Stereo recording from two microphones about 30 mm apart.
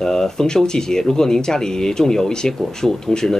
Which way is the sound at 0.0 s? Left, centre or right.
Centre.